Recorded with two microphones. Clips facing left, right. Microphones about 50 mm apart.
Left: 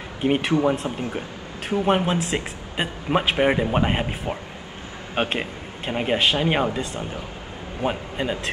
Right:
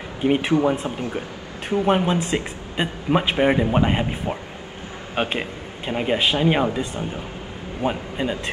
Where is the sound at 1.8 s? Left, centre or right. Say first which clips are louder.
Right 1 dB; centre.